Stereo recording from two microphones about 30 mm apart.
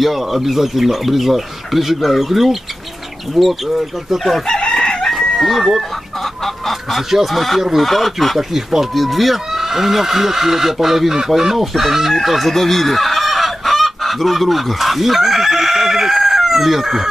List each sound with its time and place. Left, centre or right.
0.0 s speech: centre
4.7 s chicken: left
5.1 s chicken: centre
6.4 s speech: centre
7.1 s speech: centre
7.3 s speech: centre
8.4 s speech: centre
8.9 s speech: centre
12.2 s chicken: centre